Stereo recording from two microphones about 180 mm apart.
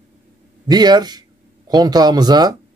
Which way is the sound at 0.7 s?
25° right (ahead or behind).